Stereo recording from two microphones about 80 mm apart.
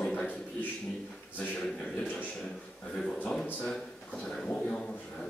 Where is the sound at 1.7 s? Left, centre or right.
Centre.